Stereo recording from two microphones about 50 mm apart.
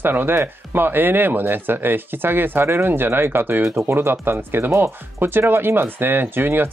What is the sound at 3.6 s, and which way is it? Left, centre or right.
Speech, right.